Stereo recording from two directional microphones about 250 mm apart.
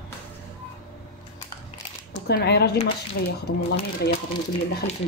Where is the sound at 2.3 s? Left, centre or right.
Left.